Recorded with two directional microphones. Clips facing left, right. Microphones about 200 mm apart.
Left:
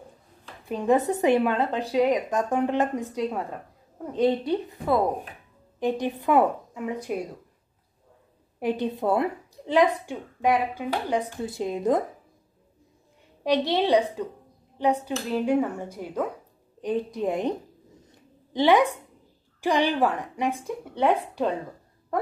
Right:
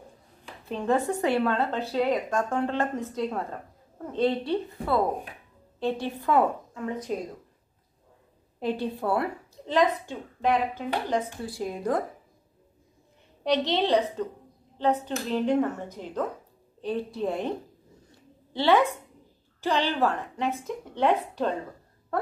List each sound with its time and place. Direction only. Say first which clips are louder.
0.7 s speech: left 3 dB; 15° left (ahead or behind)
8.5 s speech: left 2 dB; 15° left (ahead or behind)
11.4 s a woman's voice: left 4 dB; 20° left (ahead or behind)
13.4 s speech: left 2 dB; 10° left (ahead or behind)